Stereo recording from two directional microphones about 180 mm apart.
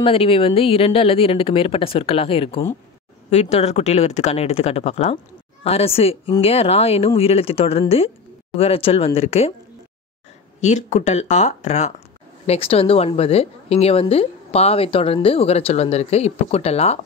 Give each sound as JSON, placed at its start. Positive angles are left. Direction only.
{"t": 0.0, "sound": "speech", "side_deg": 30}
{"t": 10.6, "sound": "speech", "side_deg": 40}